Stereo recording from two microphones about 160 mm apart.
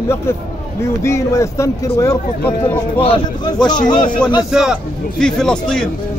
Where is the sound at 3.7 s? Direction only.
25° left (ahead or behind).